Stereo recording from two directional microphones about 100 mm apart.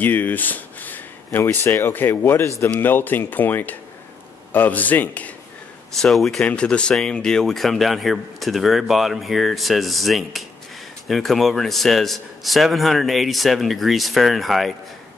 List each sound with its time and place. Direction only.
0.0 s speech: 20° left (ahead or behind)
5.9 s speech: 5° left (ahead or behind)